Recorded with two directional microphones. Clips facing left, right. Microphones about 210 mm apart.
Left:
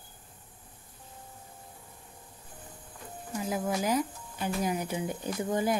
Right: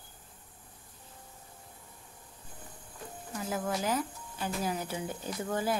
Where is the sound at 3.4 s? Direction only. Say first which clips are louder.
Left 2 dB; 10° left (ahead or behind).